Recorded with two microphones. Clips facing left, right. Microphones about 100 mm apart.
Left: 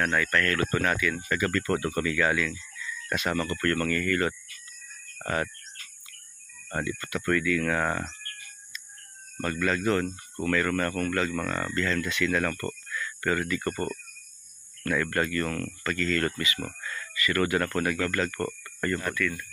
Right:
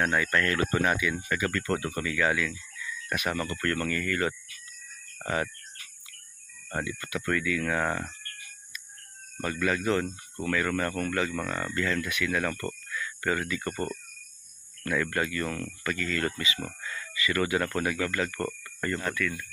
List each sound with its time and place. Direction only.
0.0 s speech: 20° right (ahead or behind)
1.8 s speech: 20° left (ahead or behind)
2.0 s speech: 10° right (ahead or behind)
5.2 s cricket: 10° right (ahead or behind)
6.7 s speech: 10° right (ahead or behind)
7.6 s speech: centre (ahead or behind)
9.4 s speech: 10° right (ahead or behind)
14.8 s speech: 5° right (ahead or behind)